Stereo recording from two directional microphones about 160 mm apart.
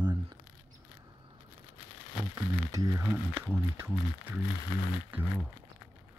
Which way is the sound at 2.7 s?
20° right (ahead or behind).